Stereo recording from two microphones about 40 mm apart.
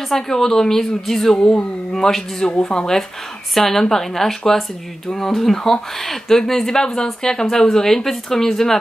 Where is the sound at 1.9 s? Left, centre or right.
Centre.